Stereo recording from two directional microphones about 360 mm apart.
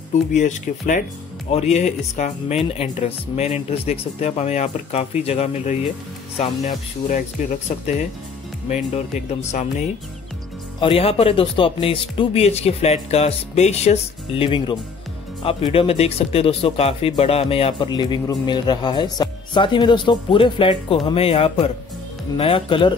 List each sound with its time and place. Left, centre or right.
0.1 s speech: centre